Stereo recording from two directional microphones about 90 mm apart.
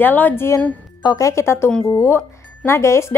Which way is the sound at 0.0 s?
20° left (ahead or behind).